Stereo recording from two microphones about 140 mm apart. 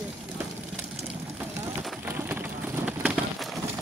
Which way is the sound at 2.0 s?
15° right (ahead or behind).